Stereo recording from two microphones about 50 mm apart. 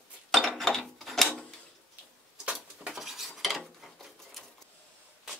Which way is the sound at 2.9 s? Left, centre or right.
Centre.